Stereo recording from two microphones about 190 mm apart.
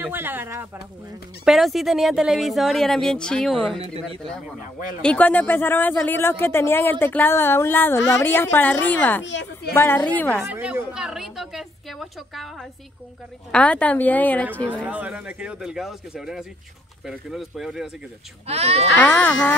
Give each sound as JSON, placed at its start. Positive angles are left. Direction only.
{"t": 0.0, "sound": "speech", "side_deg": -10}
{"t": 1.4, "sound": "speech", "side_deg": 0}
{"t": 5.0, "sound": "speech", "side_deg": 10}
{"t": 9.2, "sound": "a woman's voice", "side_deg": 70}
{"t": 9.8, "sound": "speech", "side_deg": 10}
{"t": 10.4, "sound": "speech", "side_deg": -10}
{"t": 13.5, "sound": "speech", "side_deg": 5}
{"t": 14.7, "sound": "speech", "side_deg": -5}
{"t": 18.5, "sound": "speech", "side_deg": -35}
{"t": 18.9, "sound": "speech", "side_deg": 10}